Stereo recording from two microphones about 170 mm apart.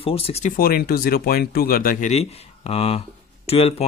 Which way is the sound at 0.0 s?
35° left (ahead or behind).